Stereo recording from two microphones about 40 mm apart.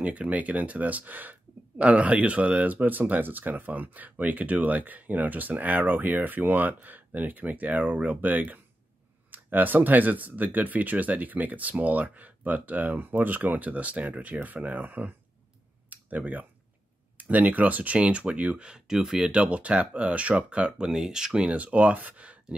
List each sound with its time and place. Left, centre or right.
0.0 s speech: right
1.9 s speech: right
15.9 s a sound: right
17.2 s speech: right
17.9 s speech: right; by 19.3 s centre
19.3 s speech: right
20.9 s speech: centre
21.5 s speech: right